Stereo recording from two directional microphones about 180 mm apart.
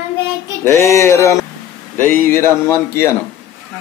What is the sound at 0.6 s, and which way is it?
Speech, 15° left (ahead or behind).